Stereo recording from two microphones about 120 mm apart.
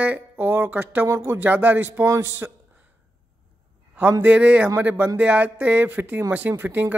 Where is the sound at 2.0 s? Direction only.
25° right (ahead or behind).